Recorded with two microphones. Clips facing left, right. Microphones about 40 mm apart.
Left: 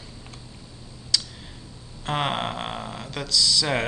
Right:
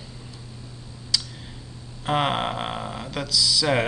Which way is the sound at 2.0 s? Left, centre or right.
Centre.